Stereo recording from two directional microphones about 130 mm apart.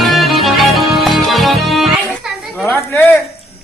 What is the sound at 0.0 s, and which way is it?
Music, centre (ahead or behind).